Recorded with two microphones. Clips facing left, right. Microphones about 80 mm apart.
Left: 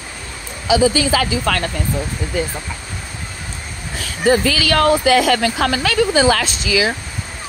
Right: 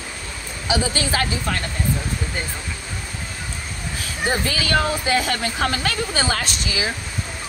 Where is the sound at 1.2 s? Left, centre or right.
Left.